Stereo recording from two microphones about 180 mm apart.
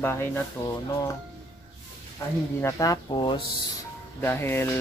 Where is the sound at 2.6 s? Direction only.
20° left (ahead or behind).